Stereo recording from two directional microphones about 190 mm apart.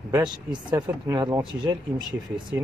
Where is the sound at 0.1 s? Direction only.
25° right (ahead or behind).